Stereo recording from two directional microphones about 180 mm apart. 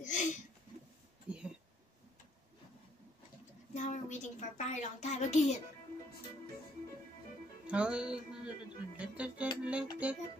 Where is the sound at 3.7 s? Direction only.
40° left (ahead or behind).